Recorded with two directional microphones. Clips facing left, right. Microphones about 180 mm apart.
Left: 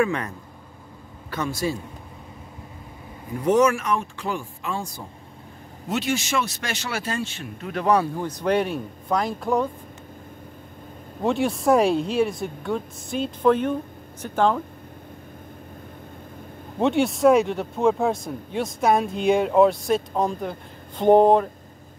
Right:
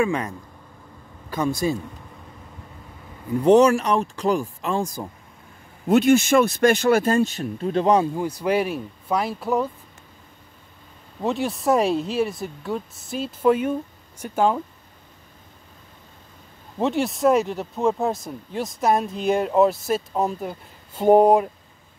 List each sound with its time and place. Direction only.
1.3 s speech: 15° right (ahead or behind)
3.4 s speech: 35° right (ahead or behind)
5.9 s speech: 55° right (ahead or behind); by 8.1 s 25° right (ahead or behind)
8.2 s speech: 10° right (ahead or behind)
11.2 s speech: centre (ahead or behind)
16.8 s speech: centre (ahead or behind)